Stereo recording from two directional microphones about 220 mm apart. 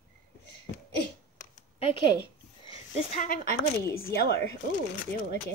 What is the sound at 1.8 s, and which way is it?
Speech, 25° left (ahead or behind).